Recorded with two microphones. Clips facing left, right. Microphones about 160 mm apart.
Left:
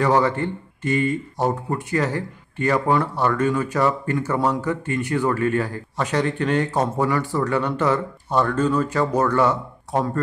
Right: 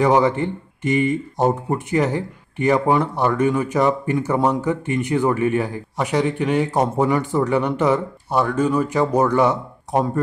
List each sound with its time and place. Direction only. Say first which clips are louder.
0.0 s speech: right 3 dB; 15° right (ahead or behind)